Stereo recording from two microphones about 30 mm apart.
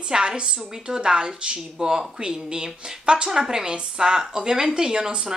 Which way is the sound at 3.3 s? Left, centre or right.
Centre.